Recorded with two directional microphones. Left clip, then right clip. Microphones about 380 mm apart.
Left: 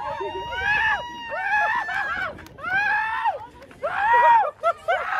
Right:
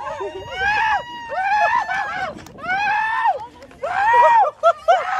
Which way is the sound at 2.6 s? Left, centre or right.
Right.